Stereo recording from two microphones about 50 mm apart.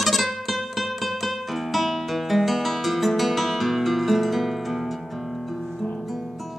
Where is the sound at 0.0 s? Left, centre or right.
Centre.